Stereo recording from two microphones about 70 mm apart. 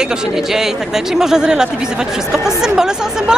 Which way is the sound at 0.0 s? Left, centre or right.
Centre.